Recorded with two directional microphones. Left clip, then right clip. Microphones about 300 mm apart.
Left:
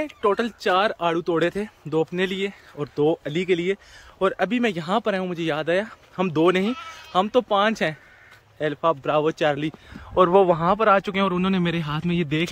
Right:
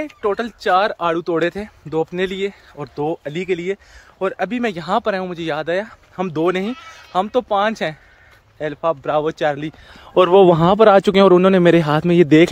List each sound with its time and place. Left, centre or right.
0.0 s speech: centre
10.1 s speech: right